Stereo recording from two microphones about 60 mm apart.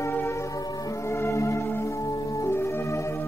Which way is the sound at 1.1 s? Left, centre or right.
Left.